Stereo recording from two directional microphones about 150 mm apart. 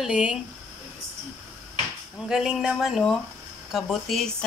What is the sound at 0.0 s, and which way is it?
Speech, 5° right (ahead or behind).